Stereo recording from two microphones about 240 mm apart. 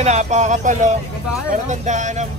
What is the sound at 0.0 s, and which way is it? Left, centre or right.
Speech, right.